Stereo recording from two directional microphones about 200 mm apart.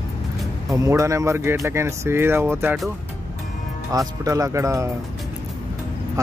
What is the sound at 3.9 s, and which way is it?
Speech, 15° right (ahead or behind).